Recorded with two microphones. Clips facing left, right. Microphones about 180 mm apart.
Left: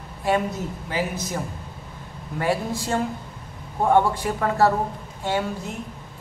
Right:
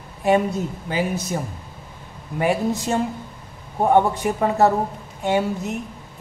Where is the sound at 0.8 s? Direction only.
25° right (ahead or behind).